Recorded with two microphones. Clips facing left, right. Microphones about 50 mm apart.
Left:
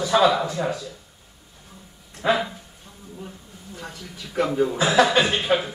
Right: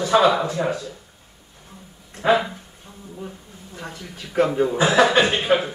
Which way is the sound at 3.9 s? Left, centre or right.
Right.